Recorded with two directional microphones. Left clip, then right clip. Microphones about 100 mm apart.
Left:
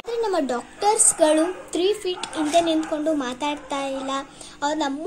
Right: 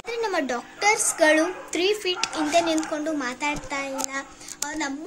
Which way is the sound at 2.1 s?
60° right (ahead or behind).